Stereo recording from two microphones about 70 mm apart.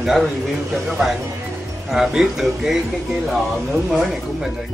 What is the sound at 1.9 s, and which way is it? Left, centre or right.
Speech, centre.